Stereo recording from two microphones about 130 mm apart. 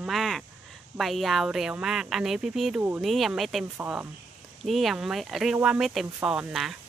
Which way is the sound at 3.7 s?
15° right (ahead or behind).